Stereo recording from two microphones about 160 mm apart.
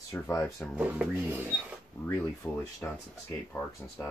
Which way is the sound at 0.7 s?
10° right (ahead or behind).